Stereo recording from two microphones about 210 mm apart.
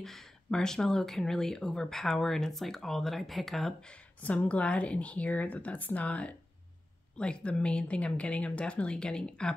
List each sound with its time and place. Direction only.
0.0 s speech: centre (ahead or behind)